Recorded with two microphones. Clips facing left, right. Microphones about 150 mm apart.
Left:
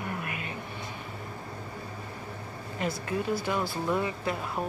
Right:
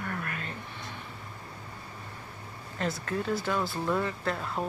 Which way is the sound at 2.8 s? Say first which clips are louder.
Left 1 dB; 10° left (ahead or behind).